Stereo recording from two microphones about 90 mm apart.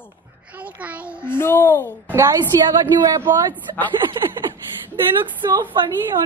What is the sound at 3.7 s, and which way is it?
Speech, 40° right (ahead or behind).